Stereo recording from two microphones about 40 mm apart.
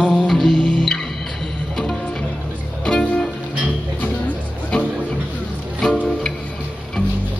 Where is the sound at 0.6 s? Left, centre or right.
Left.